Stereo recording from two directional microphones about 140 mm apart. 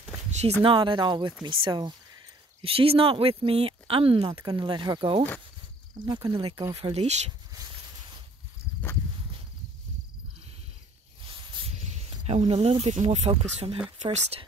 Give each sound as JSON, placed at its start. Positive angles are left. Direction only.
{"t": 0.3, "sound": "speech", "side_deg": -45}
{"t": 11.2, "sound": "snake", "side_deg": -40}
{"t": 11.8, "sound": "snake", "side_deg": -50}
{"t": 12.9, "sound": "speech", "side_deg": -55}